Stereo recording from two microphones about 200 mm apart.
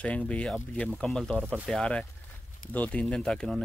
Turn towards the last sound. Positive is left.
turn(degrees=0)  # may be behind; listen again after turning